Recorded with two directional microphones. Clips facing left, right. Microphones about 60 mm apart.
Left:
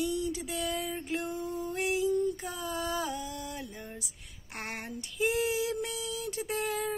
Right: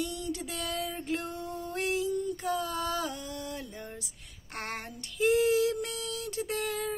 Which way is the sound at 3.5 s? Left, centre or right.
Centre.